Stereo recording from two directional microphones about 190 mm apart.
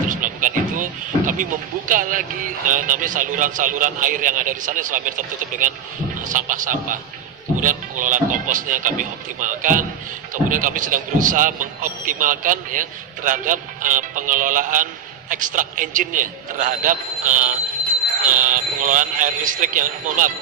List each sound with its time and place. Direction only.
0.1 s a man's voice: 45° right (ahead or behind)